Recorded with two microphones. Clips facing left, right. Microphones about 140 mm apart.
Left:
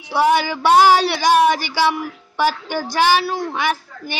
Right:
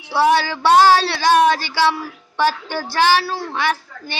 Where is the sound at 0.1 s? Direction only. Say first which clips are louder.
Even; 15° left (ahead or behind).